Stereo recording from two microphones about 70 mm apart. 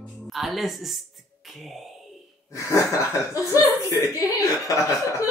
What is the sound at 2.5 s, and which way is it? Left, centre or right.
Speech, left.